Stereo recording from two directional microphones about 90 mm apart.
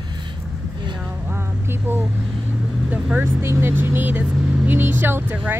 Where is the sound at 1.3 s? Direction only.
25° right (ahead or behind).